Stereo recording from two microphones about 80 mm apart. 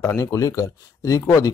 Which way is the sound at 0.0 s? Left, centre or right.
Left.